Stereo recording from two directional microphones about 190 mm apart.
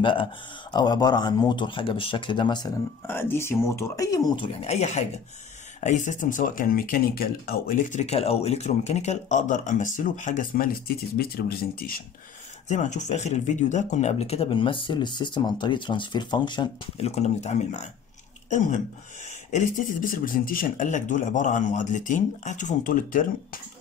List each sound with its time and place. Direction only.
0.0 s speech: 25° left (ahead or behind)
4.5 s speech: 35° left (ahead or behind); by 12.0 s 50° left (ahead or behind)
12.6 s speech: 40° left (ahead or behind)
19.5 s speech: 45° left (ahead or behind)